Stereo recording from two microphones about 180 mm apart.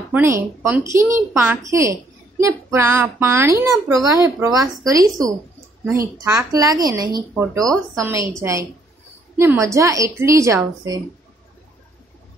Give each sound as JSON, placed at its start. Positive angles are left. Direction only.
{"t": 0.1, "sound": "a child's voice", "side_deg": -10}